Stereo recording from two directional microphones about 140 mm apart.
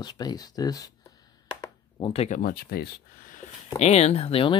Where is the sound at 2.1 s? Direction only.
50° left (ahead or behind).